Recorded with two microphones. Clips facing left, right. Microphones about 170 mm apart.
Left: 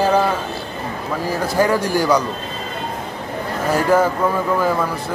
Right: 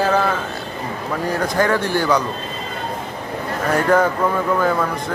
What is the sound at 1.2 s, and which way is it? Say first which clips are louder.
Speech: left 1 dB; 5° left (ahead or behind).